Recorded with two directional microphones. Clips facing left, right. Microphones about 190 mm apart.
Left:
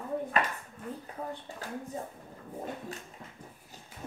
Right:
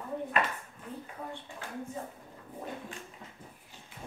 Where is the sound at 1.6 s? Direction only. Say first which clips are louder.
Left 4 dB; 40° left (ahead or behind).